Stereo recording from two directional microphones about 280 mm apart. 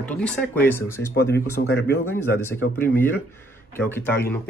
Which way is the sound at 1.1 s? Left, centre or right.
Left.